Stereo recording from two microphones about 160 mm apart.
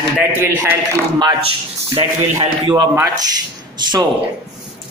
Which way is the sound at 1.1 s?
30° right (ahead or behind).